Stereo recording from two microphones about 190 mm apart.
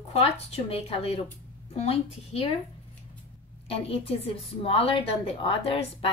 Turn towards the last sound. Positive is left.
turn(degrees=30)  # may be behind; listen again after turning